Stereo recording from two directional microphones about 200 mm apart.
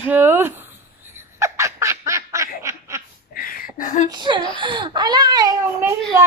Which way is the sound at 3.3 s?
45° left (ahead or behind).